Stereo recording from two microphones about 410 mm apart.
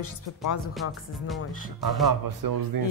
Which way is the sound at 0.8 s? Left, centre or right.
Left.